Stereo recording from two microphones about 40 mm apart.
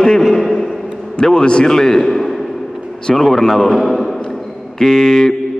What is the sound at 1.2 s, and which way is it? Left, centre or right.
A man's voice, left.